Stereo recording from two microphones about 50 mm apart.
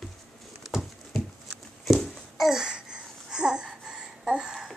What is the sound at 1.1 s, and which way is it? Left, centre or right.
Babbling, centre.